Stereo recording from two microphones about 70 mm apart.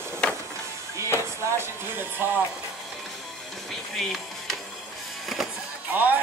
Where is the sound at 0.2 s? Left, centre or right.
Centre.